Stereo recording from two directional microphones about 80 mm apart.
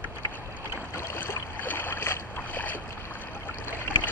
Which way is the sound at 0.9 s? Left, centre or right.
Left.